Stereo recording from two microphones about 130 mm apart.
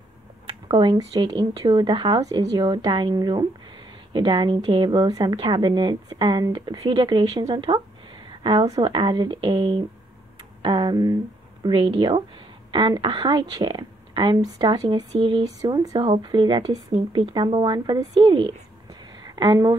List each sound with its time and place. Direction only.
0.7 s a woman's voice: 35° right (ahead or behind)
1.5 s a woman's voice: 45° right (ahead or behind)
15.1 s a woman's voice: 40° right (ahead or behind)
15.4 s a woman's voice: 30° right (ahead or behind)